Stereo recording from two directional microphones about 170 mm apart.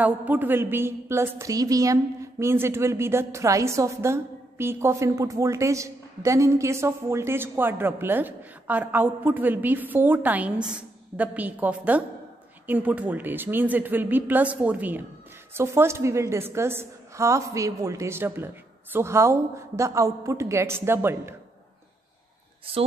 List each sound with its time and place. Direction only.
0.0 s a woman's voice: 10° right (ahead or behind)